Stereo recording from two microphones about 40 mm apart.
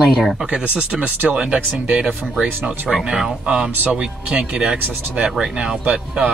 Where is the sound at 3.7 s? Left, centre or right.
Right.